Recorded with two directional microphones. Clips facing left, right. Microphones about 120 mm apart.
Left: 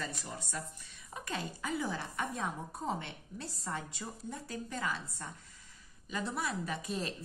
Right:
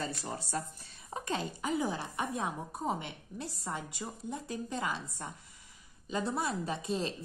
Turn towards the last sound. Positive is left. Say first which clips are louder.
# right 3 dB
turn(degrees=-25)  # may be behind; listen again after turning